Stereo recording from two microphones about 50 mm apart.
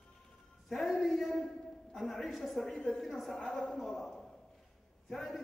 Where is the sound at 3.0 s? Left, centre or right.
Centre.